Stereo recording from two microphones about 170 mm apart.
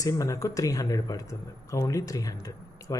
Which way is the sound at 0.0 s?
20° left (ahead or behind).